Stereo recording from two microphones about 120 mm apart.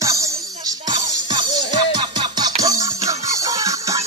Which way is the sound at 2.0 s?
40° right (ahead or behind).